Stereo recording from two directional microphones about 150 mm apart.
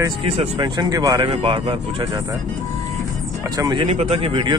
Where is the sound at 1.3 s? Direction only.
40° right (ahead or behind).